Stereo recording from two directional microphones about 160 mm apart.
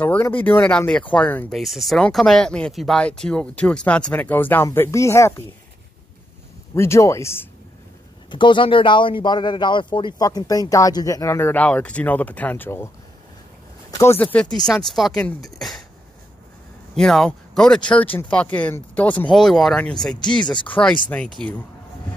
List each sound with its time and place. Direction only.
0.0 s speech: 10° left (ahead or behind)
1.6 s speech: centre (ahead or behind); by 5.3 s 20° left (ahead or behind)
6.7 s speech: 15° left (ahead or behind)
8.3 s speech: 30° left (ahead or behind); by 12.9 s 15° left (ahead or behind)
13.9 s speech: 15° left (ahead or behind)
16.9 s speech: 5° left (ahead or behind)
20.4 s speech: 30° left (ahead or behind)
20.8 s speech: 10° left (ahead or behind)